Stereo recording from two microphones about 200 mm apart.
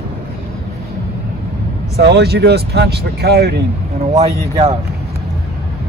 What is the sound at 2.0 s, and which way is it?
Speech, 55° right (ahead or behind).